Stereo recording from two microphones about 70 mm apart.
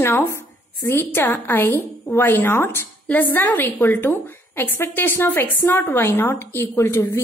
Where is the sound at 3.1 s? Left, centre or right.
Left.